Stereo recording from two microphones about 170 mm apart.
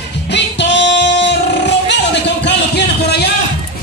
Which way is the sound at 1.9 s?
90° left.